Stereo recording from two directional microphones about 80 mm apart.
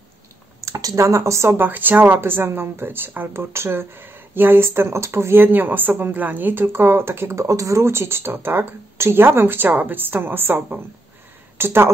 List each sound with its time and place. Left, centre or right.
0.6 s speech: right
1.6 s speech: right